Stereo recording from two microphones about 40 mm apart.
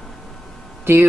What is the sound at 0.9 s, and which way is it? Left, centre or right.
Speech, right.